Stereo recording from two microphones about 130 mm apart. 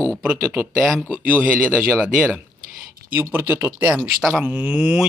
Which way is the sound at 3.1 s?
15° right (ahead or behind).